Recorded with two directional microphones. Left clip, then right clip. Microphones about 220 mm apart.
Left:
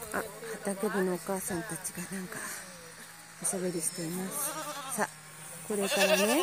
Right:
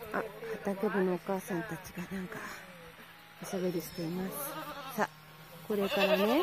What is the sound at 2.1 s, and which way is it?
Speech, 5° left (ahead or behind).